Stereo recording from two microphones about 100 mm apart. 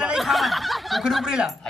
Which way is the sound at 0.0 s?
5° right (ahead or behind).